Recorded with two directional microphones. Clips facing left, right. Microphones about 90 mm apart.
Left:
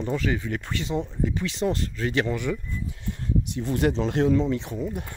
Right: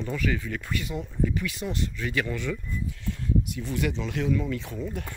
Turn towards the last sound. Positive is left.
turn(degrees=20)  # may be behind; listen again after turning